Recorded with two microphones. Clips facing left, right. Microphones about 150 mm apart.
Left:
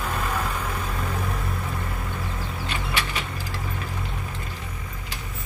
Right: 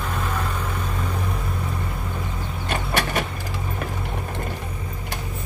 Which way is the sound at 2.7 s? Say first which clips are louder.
Right 7 dB; 50° right (ahead or behind).